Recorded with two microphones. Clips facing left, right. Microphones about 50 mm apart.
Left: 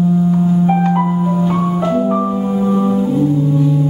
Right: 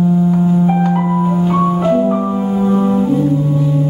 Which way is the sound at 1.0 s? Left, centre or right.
Centre.